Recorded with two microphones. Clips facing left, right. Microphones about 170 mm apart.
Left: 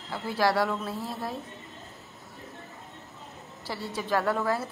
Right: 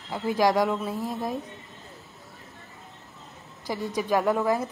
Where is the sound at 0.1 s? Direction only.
15° right (ahead or behind).